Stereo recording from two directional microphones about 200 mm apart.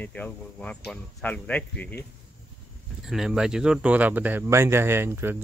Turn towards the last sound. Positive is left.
turn(degrees=-10)  # may be behind; listen again after turning